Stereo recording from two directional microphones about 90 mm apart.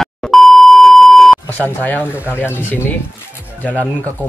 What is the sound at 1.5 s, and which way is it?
Speech, 20° left (ahead or behind).